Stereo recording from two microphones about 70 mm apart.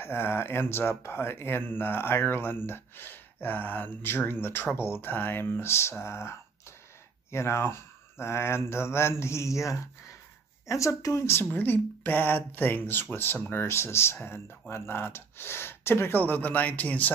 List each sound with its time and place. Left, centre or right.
0.0 s speech: left
11.2 s speech: left